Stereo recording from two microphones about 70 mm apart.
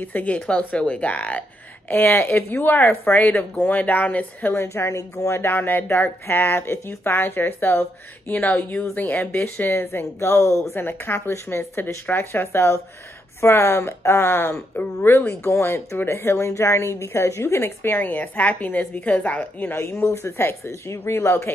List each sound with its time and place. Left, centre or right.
0.0 s speech: left
4.9 s speech: left
5.3 s speech: left
10.7 s speech: left
19.8 s speech: left